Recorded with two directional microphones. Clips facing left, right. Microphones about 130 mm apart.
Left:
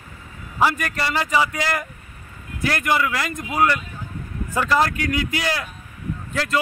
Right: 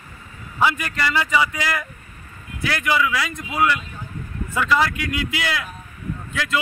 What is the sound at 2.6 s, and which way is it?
A man's voice, 45° left (ahead or behind).